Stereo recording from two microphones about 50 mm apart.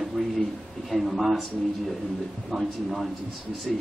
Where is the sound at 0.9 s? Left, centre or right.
Centre.